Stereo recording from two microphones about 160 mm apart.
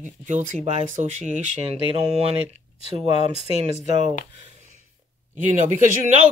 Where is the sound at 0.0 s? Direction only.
50° right (ahead or behind).